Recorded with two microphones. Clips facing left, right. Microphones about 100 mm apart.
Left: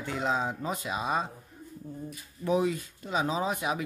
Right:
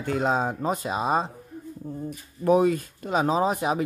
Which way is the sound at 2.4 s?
50° right (ahead or behind).